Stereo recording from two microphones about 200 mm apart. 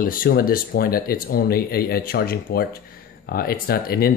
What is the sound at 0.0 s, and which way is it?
Speech, 45° left (ahead or behind).